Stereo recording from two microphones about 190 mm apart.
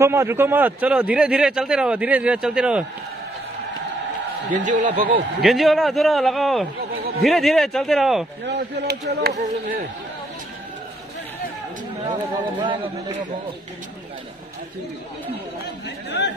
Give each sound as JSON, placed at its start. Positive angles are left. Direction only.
{"t": 0.0, "sound": "a man's voice", "side_deg": -15}
{"t": 4.5, "sound": "speech", "side_deg": -40}
{"t": 5.4, "sound": "a man's voice", "side_deg": 0}
{"t": 8.5, "sound": "speech", "side_deg": -60}
{"t": 12.1, "sound": "speech", "side_deg": -25}